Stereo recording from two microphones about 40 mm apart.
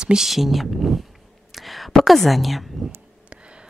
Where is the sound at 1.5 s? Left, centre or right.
Centre.